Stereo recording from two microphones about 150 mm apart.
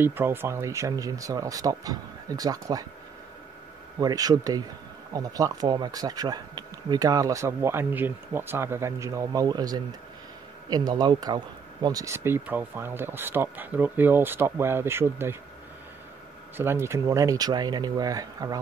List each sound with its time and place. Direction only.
0.0 s speech: 15° right (ahead or behind)
4.0 s speech: 25° right (ahead or behind)
16.5 s speech: 15° right (ahead or behind)